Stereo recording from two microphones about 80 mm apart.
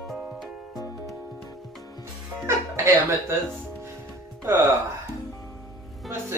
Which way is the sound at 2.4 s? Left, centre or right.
Right.